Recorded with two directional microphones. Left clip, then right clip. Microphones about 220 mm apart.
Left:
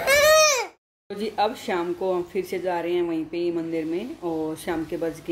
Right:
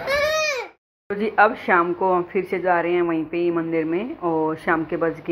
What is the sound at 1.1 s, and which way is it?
Speech, 5° left (ahead or behind).